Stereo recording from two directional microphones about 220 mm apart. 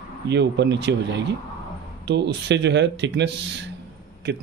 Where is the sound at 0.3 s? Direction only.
50° right (ahead or behind).